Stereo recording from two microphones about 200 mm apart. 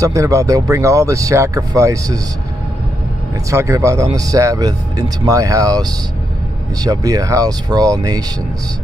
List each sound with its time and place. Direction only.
0.0 s speech: 15° right (ahead or behind)
3.4 s speech: 15° right (ahead or behind)